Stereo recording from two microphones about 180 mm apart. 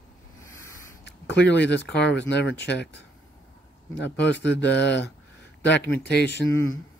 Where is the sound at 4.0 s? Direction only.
80° left.